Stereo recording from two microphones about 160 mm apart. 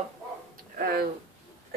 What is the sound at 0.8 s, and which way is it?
Speech, 70° right (ahead or behind).